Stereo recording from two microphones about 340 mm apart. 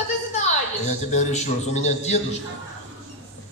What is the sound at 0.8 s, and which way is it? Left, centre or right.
A man's voice, centre.